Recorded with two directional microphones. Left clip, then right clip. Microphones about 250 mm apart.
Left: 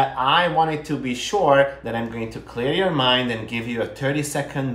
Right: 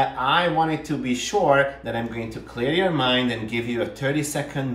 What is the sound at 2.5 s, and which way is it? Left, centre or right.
Speech, centre.